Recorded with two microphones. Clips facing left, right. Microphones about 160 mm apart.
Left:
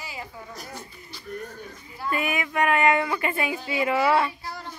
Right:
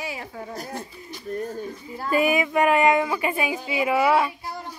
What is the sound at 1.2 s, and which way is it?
Speech, 40° right (ahead or behind).